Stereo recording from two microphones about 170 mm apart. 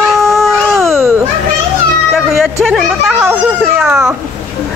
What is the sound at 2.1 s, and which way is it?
Speech, centre (ahead or behind).